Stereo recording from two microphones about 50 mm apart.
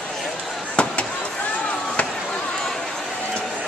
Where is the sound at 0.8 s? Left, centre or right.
Left.